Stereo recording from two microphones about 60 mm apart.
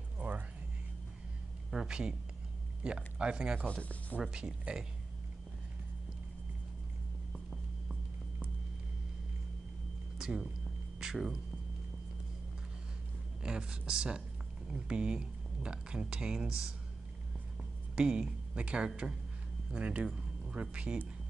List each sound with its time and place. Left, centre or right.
0.2 s music: right
1.7 s speech: centre
3.6 s speech: left
4.2 s speech: centre
10.1 s a sound: centre
11.0 s music: centre
13.4 s speech: centre
17.9 s speech: centre
20.1 s a sound: centre
20.7 s speech: centre